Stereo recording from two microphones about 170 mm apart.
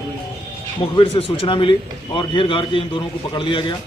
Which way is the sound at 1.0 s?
30° left (ahead or behind).